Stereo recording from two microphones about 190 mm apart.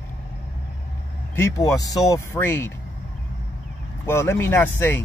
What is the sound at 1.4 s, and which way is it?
Speech, 15° left (ahead or behind).